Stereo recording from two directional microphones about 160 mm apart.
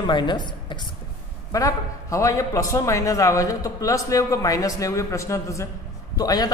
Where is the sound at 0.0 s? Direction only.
30° left (ahead or behind).